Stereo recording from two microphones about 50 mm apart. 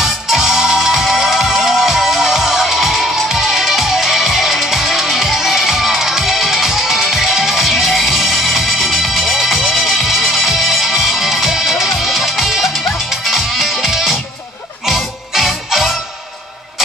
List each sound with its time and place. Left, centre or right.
0.0 s music: centre